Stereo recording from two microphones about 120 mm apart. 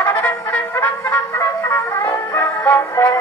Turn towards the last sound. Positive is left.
turn(degrees=25)  # may be behind; listen again after turning